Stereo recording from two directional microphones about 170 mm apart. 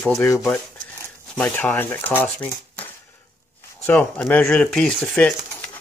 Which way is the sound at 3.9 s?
5° left (ahead or behind).